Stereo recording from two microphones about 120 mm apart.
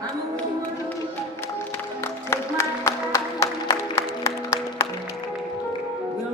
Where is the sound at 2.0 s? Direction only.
25° left (ahead or behind).